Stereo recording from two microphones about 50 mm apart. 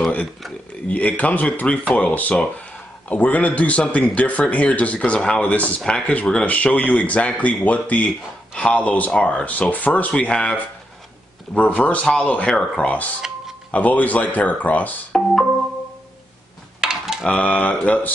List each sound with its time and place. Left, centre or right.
0.8 s a man's voice: left
5.4 s speech: left
5.9 s speech: centre
6.4 s a man's voice: left
12.0 s a man's voice: centre
12.8 s a man's voice: left
16.8 s a sound: centre
17.4 s speech: left